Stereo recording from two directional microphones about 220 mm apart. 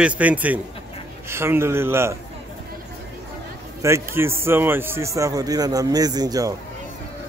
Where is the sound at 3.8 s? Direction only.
10° right (ahead or behind).